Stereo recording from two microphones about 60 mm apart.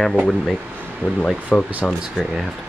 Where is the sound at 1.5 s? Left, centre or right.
Centre.